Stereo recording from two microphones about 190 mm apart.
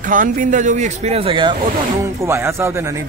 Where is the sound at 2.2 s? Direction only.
15° right (ahead or behind).